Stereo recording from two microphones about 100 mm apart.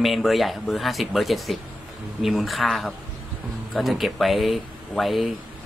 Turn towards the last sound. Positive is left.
turn(degrees=0)  # may be behind; listen again after turning